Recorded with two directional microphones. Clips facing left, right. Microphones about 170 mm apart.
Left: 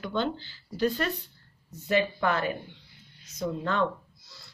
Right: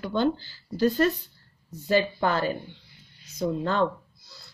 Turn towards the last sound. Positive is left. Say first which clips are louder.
# right 3 dB
turn(degrees=-30)  # may be behind; listen again after turning